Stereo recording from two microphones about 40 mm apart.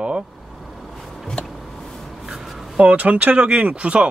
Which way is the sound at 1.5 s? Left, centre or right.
Centre.